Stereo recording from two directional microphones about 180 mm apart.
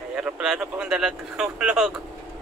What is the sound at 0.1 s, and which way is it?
Speech, 5° right (ahead or behind).